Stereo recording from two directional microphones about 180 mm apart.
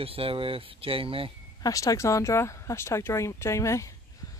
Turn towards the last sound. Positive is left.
turn(degrees=15)  # may be behind; listen again after turning